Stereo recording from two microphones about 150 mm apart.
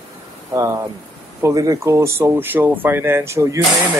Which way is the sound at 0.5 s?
20° right (ahead or behind).